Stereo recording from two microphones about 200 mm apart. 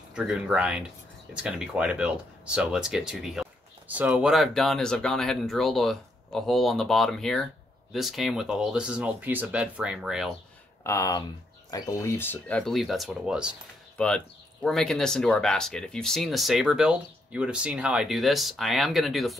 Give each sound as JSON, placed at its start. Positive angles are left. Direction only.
{"t": 0.1, "sound": "speech", "side_deg": -5}
{"t": 10.8, "sound": "speech", "side_deg": 15}